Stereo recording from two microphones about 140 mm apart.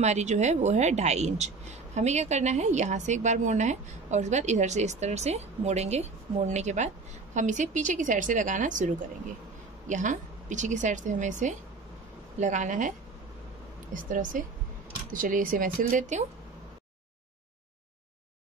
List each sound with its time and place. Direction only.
0.0 s a woman's voice: 55° right (ahead or behind)
13.9 s speech: 70° right (ahead or behind)